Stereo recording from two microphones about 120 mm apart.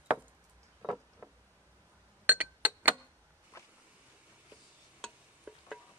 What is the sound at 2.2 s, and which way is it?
Glass, 15° right (ahead or behind).